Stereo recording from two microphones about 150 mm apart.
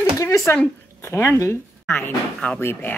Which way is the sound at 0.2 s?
20° left (ahead or behind).